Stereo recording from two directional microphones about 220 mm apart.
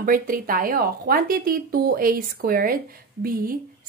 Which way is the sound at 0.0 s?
40° right (ahead or behind).